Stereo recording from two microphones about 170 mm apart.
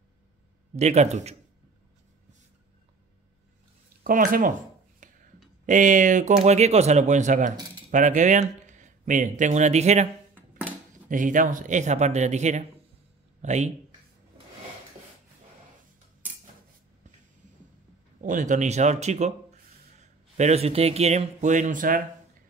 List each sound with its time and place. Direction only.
0.7 s a man's voice: 40° right (ahead or behind)
4.0 s speech: 55° right (ahead or behind)
5.0 s a sound: 50° right (ahead or behind)
5.7 s speech: 50° right (ahead or behind)
11.1 s speech: 50° right (ahead or behind)
18.2 s speech: 50° right (ahead or behind)